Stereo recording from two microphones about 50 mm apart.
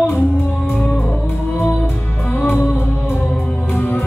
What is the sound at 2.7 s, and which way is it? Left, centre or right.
Music, left.